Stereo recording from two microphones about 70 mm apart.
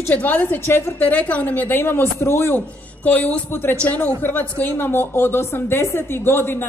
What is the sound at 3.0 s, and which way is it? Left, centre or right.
Speech, left.